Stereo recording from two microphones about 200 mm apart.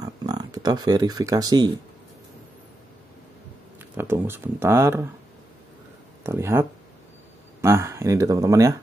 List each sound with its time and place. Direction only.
0.0 s speech: 20° right (ahead or behind)
3.9 s speech: 10° right (ahead or behind)
6.2 s speech: 10° right (ahead or behind)